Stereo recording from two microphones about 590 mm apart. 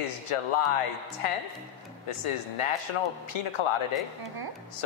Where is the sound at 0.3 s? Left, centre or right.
Left.